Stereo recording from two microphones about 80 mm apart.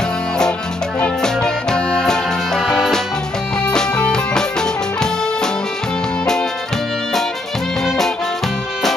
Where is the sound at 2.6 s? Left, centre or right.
Centre.